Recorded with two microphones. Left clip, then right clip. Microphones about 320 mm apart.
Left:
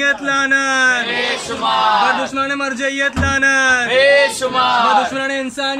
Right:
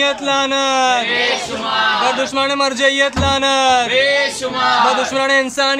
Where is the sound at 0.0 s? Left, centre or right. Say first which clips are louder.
Even; centre.